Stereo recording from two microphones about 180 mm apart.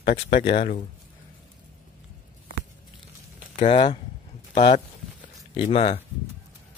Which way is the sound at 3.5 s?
30° left (ahead or behind).